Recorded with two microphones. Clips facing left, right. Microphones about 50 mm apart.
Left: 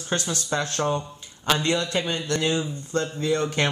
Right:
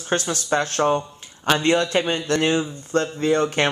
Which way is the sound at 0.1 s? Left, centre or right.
Right.